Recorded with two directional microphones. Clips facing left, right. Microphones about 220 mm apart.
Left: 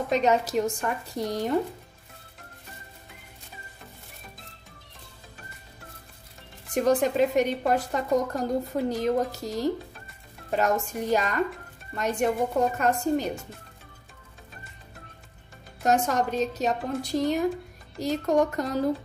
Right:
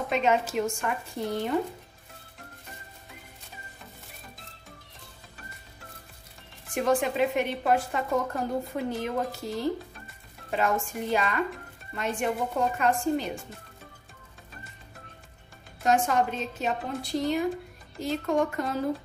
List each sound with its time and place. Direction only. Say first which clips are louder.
0.1 s a woman's voice: left 2 dB; 40° left (ahead or behind)
6.7 s a woman's voice: left 3 dB; 40° left (ahead or behind)
15.8 s a woman's voice: left 1 dB; 40° left (ahead or behind)